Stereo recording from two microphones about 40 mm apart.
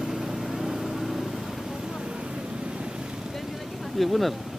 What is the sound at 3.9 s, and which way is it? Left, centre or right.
Speech, centre.